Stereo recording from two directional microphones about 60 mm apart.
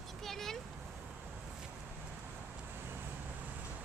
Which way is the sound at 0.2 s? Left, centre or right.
Centre.